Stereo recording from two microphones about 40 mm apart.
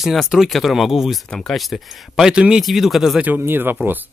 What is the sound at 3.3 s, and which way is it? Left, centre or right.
Speech, right.